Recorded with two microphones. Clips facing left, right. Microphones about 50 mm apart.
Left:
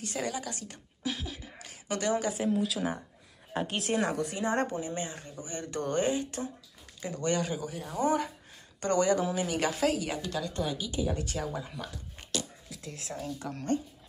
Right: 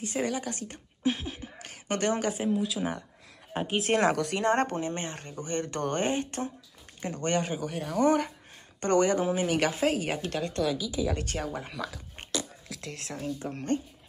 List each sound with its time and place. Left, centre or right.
0.0 s speech: right
2.4 s speech: centre
3.5 s a woman's voice: right
3.9 s a woman's voice: right
7.6 s a woman's voice: right
12.2 s music: right
12.6 s a sound: right
12.9 s speech: right
13.2 s a woman's voice: right